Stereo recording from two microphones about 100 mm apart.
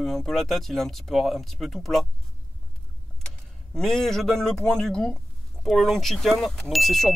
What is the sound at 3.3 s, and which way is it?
Speech, 5° left (ahead or behind).